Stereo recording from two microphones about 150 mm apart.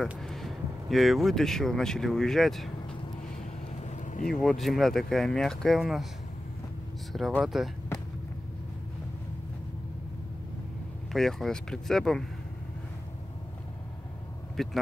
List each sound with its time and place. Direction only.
0.2 s speech: centre (ahead or behind)
3.8 s vehicle: 55° left (ahead or behind)
4.3 s speech: centre (ahead or behind)
7.1 s speech: centre (ahead or behind)
11.1 s speech: 5° left (ahead or behind)
14.6 s speech: centre (ahead or behind)